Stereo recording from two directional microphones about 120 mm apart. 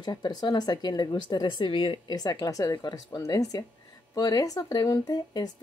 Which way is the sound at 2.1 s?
30° left (ahead or behind).